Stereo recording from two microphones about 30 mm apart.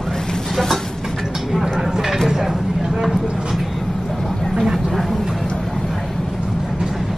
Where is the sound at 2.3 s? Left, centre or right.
Centre.